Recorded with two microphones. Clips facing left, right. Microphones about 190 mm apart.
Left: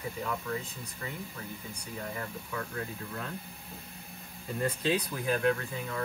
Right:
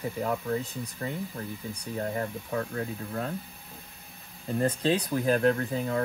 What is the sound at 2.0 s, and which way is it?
Speech, 40° right (ahead or behind).